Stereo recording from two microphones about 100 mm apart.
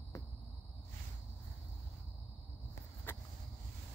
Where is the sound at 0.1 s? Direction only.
30° left (ahead or behind).